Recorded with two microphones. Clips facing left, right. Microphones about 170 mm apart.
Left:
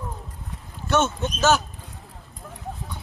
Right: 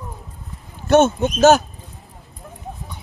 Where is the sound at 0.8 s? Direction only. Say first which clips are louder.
Right 8 dB; 55° right (ahead or behind).